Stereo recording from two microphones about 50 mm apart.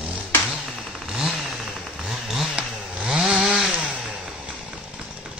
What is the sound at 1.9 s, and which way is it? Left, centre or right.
Chainsaw, centre.